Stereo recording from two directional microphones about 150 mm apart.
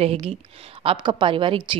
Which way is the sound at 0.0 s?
40° right (ahead or behind).